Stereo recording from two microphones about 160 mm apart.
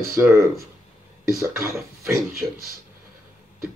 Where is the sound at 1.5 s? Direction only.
15° right (ahead or behind).